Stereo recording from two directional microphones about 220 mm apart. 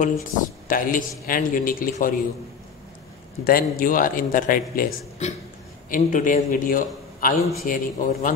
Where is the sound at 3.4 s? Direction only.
40° left (ahead or behind).